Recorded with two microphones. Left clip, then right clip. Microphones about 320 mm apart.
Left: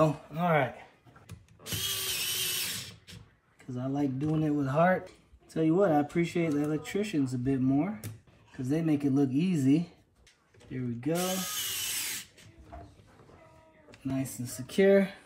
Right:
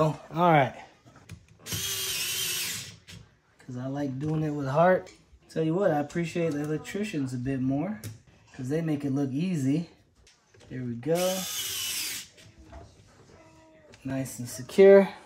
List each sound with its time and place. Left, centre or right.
0.3 s speech: right
1.2 s drill: centre
3.7 s speech: centre
10.8 s drill: centre
13.9 s speech: centre